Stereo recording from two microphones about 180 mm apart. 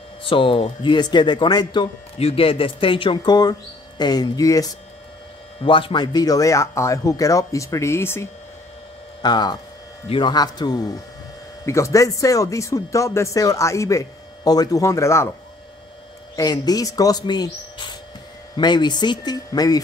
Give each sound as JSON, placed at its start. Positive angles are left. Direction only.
{"t": 0.2, "sound": "speech", "side_deg": 30}
{"t": 16.3, "sound": "speech", "side_deg": 20}